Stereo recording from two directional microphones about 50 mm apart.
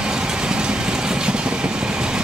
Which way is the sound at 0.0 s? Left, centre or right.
Centre.